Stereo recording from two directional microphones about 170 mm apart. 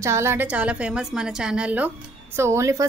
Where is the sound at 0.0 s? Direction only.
15° right (ahead or behind).